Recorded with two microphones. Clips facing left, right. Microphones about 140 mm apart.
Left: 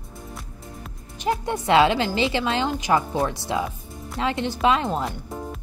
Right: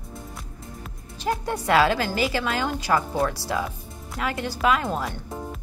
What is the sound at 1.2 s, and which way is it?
A woman's voice, 20° left (ahead or behind).